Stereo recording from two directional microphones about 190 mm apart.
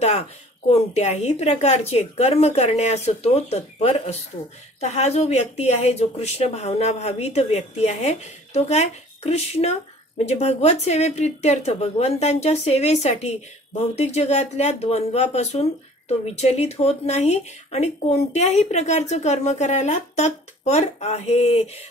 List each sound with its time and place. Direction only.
0.7 s speech: 35° left (ahead or behind)